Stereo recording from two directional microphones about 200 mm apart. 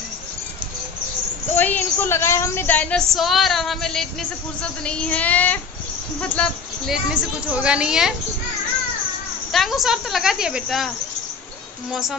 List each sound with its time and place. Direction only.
1.5 s a woman's voice: 10° left (ahead or behind)
9.5 s a woman's voice: centre (ahead or behind)
11.9 s a woman's voice: centre (ahead or behind)